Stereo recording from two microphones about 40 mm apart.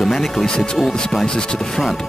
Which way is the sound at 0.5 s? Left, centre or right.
Left.